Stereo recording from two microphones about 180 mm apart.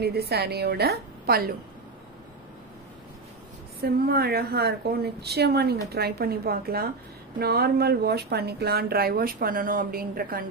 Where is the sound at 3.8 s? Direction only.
60° right (ahead or behind).